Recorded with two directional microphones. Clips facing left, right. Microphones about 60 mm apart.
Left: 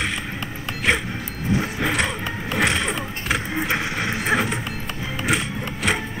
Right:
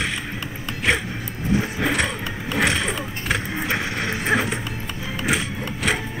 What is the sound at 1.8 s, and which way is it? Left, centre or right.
Vehicle, centre.